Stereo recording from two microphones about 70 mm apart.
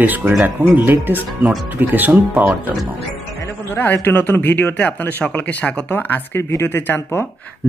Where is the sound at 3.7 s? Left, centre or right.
Left.